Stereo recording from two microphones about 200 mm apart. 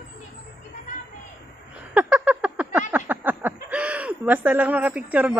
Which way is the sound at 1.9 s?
5° right (ahead or behind).